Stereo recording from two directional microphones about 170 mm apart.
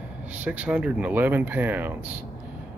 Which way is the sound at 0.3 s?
10° right (ahead or behind).